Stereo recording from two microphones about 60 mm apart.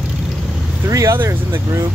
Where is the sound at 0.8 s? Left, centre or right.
Right.